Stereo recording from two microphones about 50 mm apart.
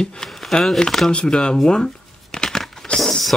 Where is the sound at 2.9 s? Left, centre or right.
Centre.